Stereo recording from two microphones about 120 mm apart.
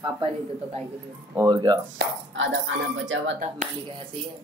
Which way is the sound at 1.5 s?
35° right (ahead or behind).